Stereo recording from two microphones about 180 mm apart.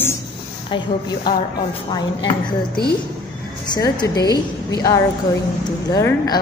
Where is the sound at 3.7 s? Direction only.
25° left (ahead or behind).